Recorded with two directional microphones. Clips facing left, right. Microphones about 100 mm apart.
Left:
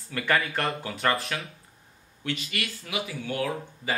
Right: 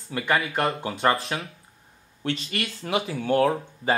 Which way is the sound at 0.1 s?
20° right (ahead or behind).